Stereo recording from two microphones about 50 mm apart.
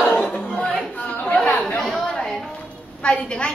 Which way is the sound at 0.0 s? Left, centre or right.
Centre.